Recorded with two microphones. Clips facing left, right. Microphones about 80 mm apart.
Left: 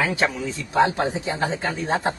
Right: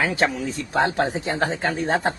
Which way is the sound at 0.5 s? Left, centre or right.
Right.